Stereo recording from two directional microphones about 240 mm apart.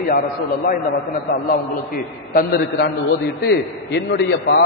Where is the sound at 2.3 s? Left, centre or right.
Left.